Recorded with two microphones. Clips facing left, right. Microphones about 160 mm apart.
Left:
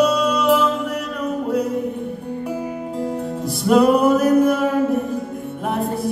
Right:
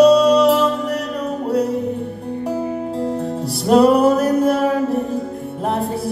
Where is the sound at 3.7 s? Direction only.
30° right (ahead or behind).